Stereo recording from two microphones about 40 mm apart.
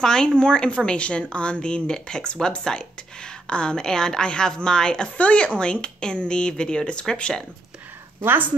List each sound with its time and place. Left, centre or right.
0.0 s speech: centre